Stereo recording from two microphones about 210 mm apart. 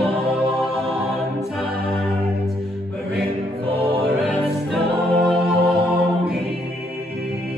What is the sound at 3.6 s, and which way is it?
Music, 25° right (ahead or behind).